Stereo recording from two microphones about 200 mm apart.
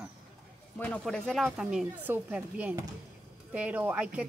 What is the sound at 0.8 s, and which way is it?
Speech, 5° left (ahead or behind).